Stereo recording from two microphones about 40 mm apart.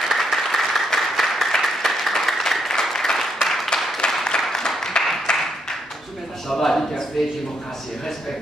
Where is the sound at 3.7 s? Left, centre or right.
Centre.